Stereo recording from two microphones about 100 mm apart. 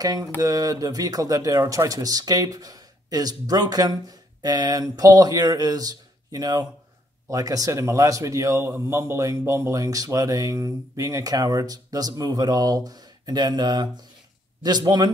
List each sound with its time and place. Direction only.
0.0 s a man's voice: 40° right (ahead or behind)